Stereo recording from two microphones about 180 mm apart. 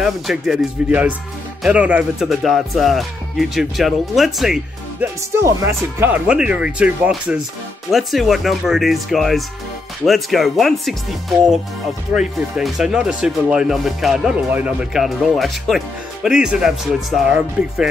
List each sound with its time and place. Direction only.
0.0 s speech: centre (ahead or behind)
5.0 s speech: 15° right (ahead or behind)